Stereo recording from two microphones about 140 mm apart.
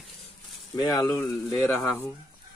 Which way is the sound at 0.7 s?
25° left (ahead or behind).